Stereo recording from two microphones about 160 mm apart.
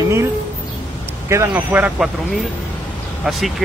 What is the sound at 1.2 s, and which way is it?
Speech, 15° right (ahead or behind).